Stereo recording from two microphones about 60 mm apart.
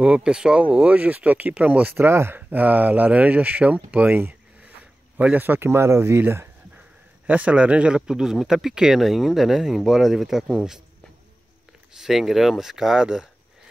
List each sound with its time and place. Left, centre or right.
0.0 s speech: centre
2.0 s speech: right
7.2 s speech: right
11.9 s speech: centre